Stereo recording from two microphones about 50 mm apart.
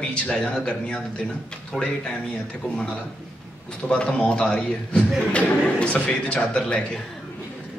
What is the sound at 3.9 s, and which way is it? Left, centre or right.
A man's voice, left.